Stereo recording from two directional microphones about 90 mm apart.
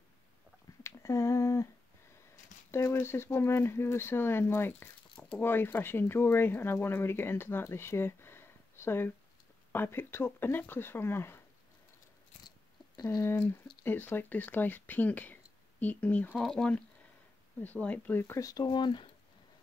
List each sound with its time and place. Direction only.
0.8 s humming: 35° left (ahead or behind)
2.7 s speech: 30° left (ahead or behind)
13.0 s speech: 30° left (ahead or behind)
16.3 s speech: 5° left (ahead or behind)
18.2 s speech: 30° left (ahead or behind)
18.5 s speech: 55° left (ahead or behind)